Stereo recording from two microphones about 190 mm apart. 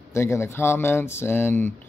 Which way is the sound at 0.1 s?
15° left (ahead or behind).